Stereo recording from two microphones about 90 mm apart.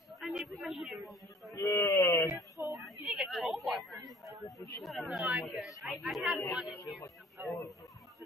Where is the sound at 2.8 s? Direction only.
5° right (ahead or behind).